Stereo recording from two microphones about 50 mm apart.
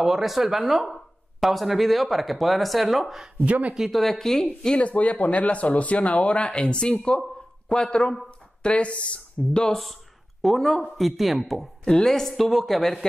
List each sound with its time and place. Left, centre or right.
0.0 s speech: centre
3.4 s speech: right
3.7 s speech: centre
4.7 s speech: left; by 8.3 s centre
8.6 s speech: left
10.4 s speech: centre
11.8 s speech: centre